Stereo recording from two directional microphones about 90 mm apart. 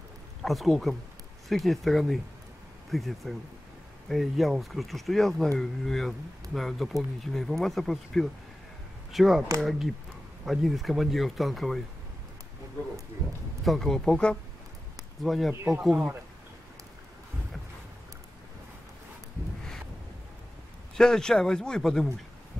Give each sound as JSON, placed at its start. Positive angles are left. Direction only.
{"t": 0.4, "sound": "speech", "side_deg": 0}
{"t": 13.7, "sound": "speech", "side_deg": 5}
{"t": 15.9, "sound": "speech", "side_deg": -20}
{"t": 20.9, "sound": "speech", "side_deg": 5}